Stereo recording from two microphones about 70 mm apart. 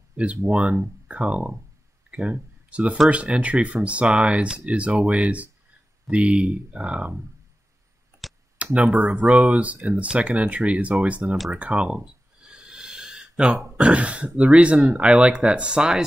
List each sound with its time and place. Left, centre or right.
0.5 s speech: centre
2.0 s a sound: centre
3.1 s speech: centre
8.7 s speech: right
11.5 s a sound: centre
13.7 s speech: centre